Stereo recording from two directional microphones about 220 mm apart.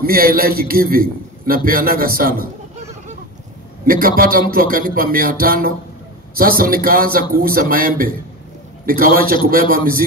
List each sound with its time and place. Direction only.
0.0 s a man's voice: 40° right (ahead or behind)
3.8 s a man's voice: 40° right (ahead or behind)